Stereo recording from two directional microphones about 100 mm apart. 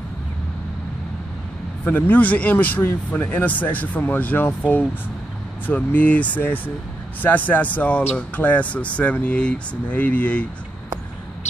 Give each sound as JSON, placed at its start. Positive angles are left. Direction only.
{"t": 1.9, "sound": "speech", "side_deg": 20}